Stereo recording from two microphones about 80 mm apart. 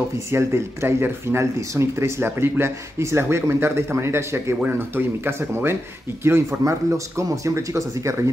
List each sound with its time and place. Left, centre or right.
0.3 s speech: right